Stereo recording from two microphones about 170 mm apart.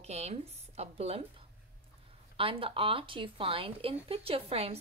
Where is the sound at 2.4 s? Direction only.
30° right (ahead or behind).